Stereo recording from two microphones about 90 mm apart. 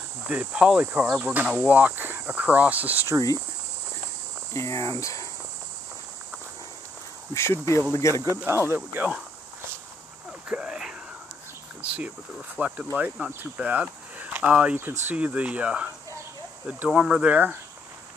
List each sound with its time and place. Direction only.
0.3 s speech: 15° right (ahead or behind)
4.6 s speech: 35° left (ahead or behind)
7.3 s speech: 30° left (ahead or behind)
8.5 s speech: 25° right (ahead or behind)
10.5 s a sound: 10° right (ahead or behind)
11.8 s speech: 15° right (ahead or behind)